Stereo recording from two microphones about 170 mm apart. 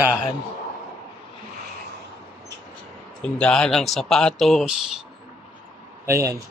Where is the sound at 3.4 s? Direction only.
5° left (ahead or behind).